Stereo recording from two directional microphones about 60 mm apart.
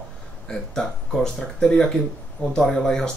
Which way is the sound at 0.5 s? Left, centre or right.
Centre.